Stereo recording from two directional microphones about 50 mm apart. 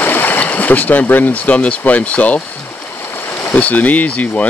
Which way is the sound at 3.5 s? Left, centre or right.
Left.